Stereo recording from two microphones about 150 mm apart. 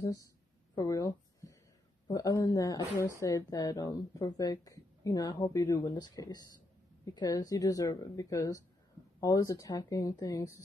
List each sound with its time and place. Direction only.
0.0 s speech: 20° left (ahead or behind)
0.7 s a sound: 20° left (ahead or behind)
2.0 s speech: 25° left (ahead or behind)